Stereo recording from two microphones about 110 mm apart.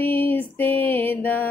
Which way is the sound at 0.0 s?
15° left (ahead or behind).